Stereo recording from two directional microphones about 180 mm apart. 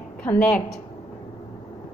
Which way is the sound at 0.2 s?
10° left (ahead or behind).